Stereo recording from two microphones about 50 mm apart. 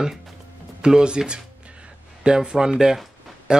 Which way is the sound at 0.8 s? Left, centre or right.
Centre.